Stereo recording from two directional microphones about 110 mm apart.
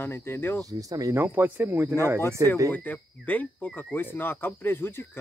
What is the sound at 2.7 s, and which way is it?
Cricket, 15° left (ahead or behind).